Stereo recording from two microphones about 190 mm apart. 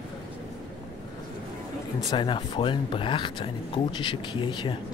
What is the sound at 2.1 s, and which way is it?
Speech, 25° left (ahead or behind).